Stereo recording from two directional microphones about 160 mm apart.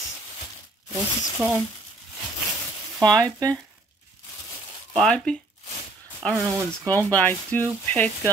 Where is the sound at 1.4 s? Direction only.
10° right (ahead or behind).